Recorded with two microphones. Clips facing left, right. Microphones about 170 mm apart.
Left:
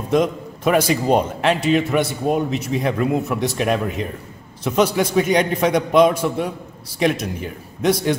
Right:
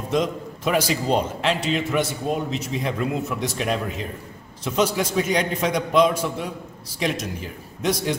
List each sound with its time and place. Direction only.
0.1 s a man's voice: 55° left (ahead or behind)